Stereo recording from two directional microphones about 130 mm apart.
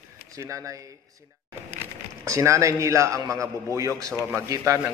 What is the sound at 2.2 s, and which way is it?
A man's voice, 25° right (ahead or behind).